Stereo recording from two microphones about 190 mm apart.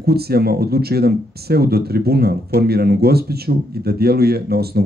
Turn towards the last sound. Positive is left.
turn(degrees=-55)  # may be behind; listen again after turning